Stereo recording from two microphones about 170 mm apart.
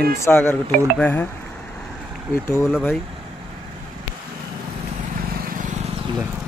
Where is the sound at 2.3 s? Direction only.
15° left (ahead or behind).